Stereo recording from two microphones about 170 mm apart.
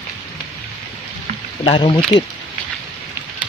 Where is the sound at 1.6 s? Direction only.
30° left (ahead or behind).